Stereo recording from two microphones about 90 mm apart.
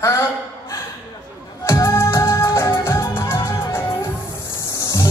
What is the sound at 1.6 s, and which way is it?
Music, 35° left (ahead or behind).